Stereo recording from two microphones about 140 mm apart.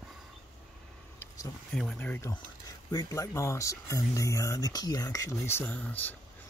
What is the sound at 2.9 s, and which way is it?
Speech, 25° left (ahead or behind).